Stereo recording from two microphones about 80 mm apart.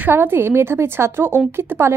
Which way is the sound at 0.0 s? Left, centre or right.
Right.